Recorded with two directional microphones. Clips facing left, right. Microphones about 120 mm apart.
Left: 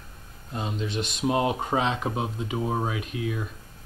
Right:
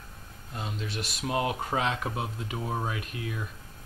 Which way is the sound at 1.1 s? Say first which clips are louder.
Left 5 dB; 25° left (ahead or behind).